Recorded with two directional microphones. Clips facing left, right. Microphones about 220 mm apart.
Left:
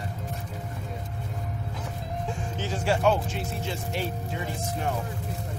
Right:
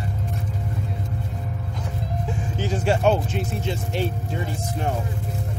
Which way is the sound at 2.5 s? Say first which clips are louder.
Right 5 dB; 15° right (ahead or behind).